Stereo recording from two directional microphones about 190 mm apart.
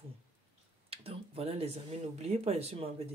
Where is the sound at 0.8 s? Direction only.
30° right (ahead or behind).